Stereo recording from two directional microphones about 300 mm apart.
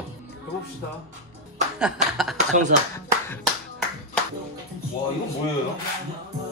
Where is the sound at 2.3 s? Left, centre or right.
Right.